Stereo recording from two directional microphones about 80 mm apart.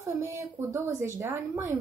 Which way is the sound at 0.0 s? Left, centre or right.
Right.